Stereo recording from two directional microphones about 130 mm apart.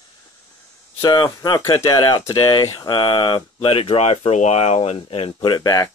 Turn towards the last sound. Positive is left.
turn(degrees=30)  # may be behind; listen again after turning